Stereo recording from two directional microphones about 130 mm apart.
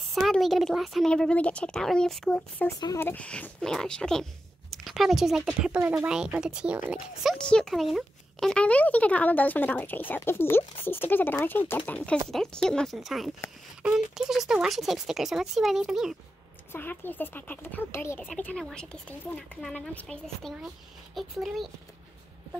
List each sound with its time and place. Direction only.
0.1 s a woman's voice: centre (ahead or behind)
7.3 s speech: 5° left (ahead or behind)
12.3 s a woman's voice: 5° left (ahead or behind)
16.7 s speech: 15° left (ahead or behind)
18.3 s speech: 10° left (ahead or behind)
20.6 s a woman's voice: centre (ahead or behind)